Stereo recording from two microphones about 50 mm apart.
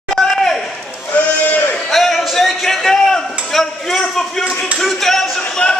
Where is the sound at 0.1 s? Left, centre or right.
Centre.